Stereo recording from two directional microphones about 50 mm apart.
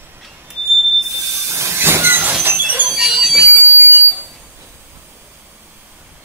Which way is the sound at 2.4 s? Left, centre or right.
Right.